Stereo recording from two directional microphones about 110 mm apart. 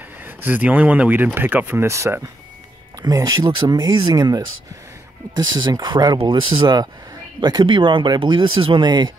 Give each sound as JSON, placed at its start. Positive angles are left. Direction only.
{"t": 0.2, "sound": "speech", "side_deg": -15}